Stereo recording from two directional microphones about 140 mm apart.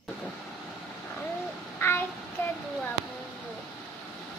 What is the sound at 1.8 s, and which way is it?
Child singing, 15° left (ahead or behind).